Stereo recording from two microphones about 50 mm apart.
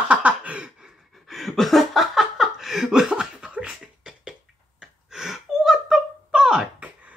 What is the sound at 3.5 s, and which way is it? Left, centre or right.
Beatboxing, centre.